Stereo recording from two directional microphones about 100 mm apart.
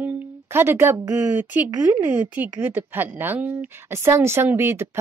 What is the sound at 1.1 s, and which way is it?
Speech, 20° right (ahead or behind).